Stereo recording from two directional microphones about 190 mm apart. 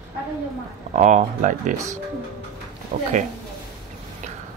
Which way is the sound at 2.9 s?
40° right (ahead or behind).